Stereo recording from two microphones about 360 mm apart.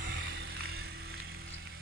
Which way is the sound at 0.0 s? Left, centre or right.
Right.